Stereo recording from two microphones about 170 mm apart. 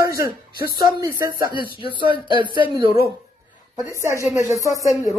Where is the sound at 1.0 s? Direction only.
20° right (ahead or behind).